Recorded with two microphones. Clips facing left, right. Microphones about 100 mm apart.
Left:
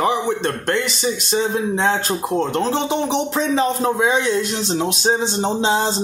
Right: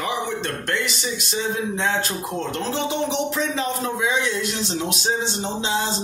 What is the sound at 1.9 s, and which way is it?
A man's voice, 30° left (ahead or behind).